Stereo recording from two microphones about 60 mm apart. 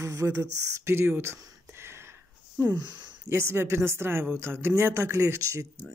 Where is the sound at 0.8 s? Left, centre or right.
Right.